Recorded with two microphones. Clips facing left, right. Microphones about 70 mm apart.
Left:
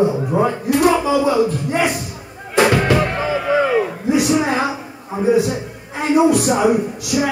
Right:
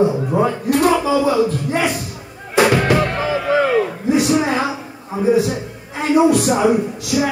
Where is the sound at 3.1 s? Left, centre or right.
Left.